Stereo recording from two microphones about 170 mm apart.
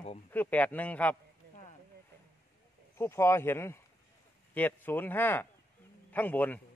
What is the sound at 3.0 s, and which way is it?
Speech, 15° left (ahead or behind).